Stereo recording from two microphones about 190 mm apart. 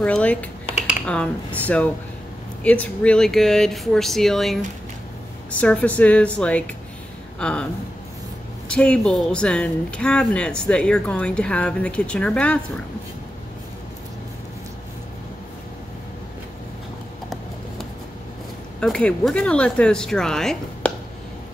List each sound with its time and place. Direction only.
0.0 s a woman's voice: 5° left (ahead or behind)
8.6 s speech: 5° left (ahead or behind)
18.8 s speech: 5° left (ahead or behind)